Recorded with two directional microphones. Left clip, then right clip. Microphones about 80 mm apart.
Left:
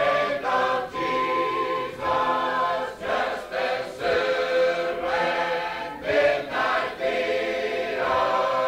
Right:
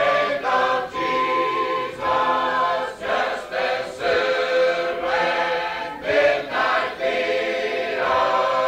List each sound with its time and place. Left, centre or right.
0.0 s music: right